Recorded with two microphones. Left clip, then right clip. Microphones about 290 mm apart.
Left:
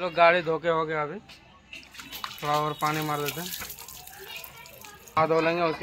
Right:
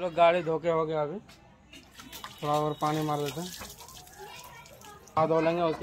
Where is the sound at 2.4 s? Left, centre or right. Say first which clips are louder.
Left 2 dB; centre.